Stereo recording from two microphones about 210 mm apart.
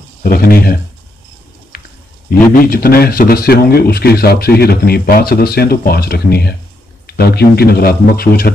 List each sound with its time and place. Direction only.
0.2 s speech: 45° left (ahead or behind)
2.5 s speech: 45° left (ahead or behind)